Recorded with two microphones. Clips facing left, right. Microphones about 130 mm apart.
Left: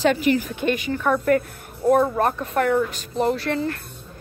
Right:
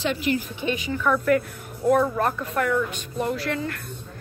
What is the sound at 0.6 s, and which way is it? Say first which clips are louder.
Speech: left 5 dB; 60° left (ahead or behind).